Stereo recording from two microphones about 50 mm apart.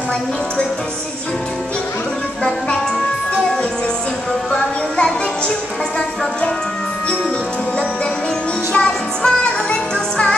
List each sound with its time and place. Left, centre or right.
4.5 s music: centre
8.7 s music: centre